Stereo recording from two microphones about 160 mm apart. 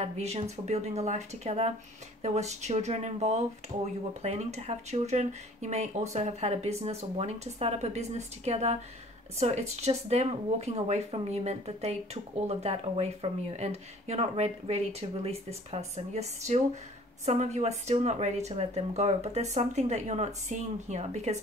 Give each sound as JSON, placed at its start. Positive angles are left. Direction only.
{"t": 0.0, "sound": "speech", "side_deg": -40}